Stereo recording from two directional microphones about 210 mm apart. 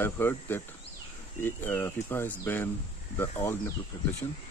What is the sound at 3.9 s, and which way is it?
Speech, 20° left (ahead or behind).